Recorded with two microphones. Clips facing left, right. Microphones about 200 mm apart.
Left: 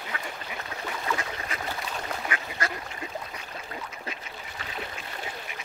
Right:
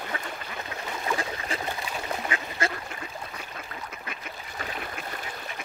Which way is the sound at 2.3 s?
25° right (ahead or behind).